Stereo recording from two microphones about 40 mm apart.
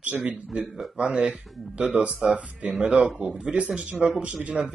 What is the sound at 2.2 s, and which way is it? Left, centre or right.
Speech, right.